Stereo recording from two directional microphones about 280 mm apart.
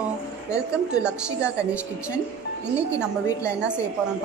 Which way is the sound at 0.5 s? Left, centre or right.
Centre.